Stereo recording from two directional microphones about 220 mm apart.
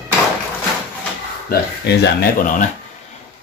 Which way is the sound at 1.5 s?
45° left (ahead or behind).